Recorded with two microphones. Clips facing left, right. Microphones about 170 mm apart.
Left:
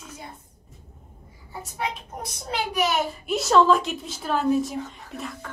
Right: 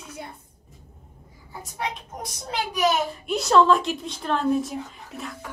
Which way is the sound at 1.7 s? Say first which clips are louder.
Even; centre (ahead or behind).